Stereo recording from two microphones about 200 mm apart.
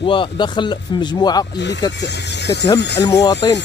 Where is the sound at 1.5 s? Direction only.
60° left (ahead or behind).